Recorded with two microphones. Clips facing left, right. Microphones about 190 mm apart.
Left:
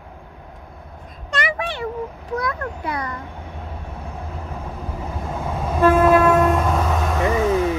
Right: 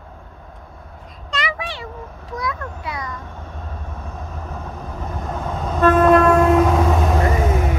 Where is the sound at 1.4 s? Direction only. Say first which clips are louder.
Left 6 dB; 55° left (ahead or behind).